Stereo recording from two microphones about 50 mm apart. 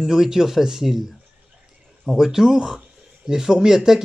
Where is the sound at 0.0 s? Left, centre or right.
Centre.